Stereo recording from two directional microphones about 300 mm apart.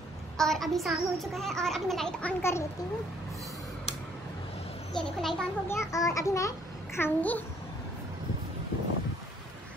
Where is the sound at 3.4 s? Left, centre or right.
Centre.